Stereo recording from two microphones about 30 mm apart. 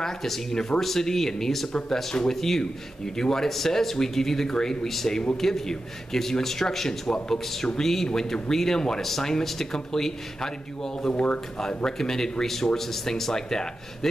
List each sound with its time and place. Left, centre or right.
0.0 s a man's voice: centre
4.5 s speech: left
4.8 s a man's voice: centre
11.1 s speech: left
11.6 s a man's voice: centre